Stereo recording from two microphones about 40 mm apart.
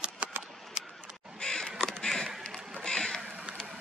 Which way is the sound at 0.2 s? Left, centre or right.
Right.